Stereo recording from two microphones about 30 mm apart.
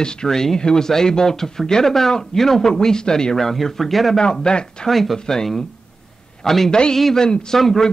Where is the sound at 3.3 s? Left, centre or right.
Centre.